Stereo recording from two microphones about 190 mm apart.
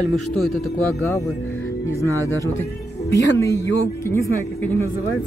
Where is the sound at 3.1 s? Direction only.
70° left (ahead or behind).